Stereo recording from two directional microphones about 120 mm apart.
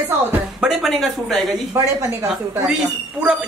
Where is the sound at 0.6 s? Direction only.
5° right (ahead or behind).